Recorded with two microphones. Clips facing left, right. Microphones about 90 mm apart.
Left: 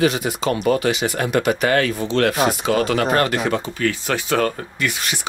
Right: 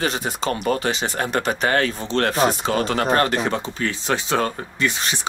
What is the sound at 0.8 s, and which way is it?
Speech, 35° right (ahead or behind).